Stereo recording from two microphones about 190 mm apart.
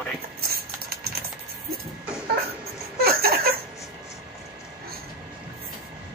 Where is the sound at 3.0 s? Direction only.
55° right (ahead or behind).